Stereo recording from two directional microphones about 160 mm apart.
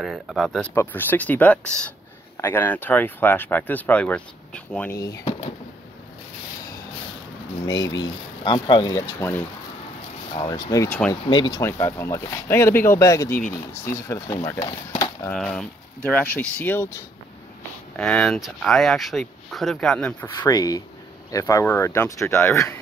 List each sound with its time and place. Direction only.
0.0 s speech: centre (ahead or behind)
4.9 s speech: 25° left (ahead or behind)
7.6 s speech: 25° left (ahead or behind)
11.2 s speech: 30° left (ahead or behind)
11.6 s speech: 15° left (ahead or behind)
14.9 s a sound: 20° left (ahead or behind)
15.3 s speech: 5° left (ahead or behind)
20.3 s speech: 25° left (ahead or behind)